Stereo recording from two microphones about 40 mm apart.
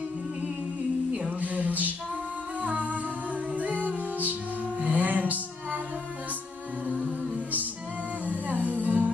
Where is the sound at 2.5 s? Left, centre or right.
Right.